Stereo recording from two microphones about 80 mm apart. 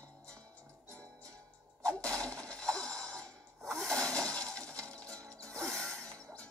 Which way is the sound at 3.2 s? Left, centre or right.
Centre.